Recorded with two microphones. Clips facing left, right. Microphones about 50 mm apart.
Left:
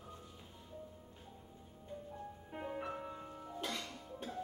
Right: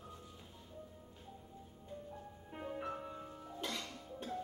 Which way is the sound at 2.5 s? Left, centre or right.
Centre.